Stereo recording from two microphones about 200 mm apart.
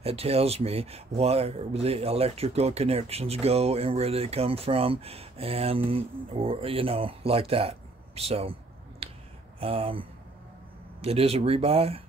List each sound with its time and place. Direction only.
0.0 s speech: 30° right (ahead or behind)
9.0 s finger snapping: 30° right (ahead or behind)
9.6 s speech: 30° right (ahead or behind)